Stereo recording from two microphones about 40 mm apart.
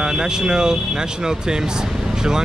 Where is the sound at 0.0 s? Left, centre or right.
Centre.